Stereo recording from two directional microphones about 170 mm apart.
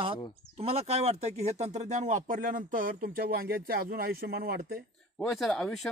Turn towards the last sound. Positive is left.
turn(degrees=0)  # may be behind; listen again after turning